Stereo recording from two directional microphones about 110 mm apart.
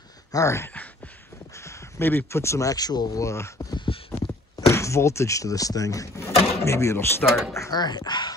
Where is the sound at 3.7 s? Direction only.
50° left (ahead or behind).